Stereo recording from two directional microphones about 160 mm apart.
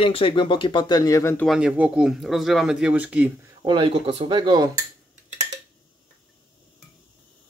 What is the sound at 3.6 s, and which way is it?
Speech, 30° right (ahead or behind).